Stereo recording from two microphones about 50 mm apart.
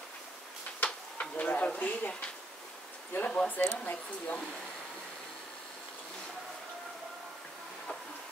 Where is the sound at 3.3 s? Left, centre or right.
Left.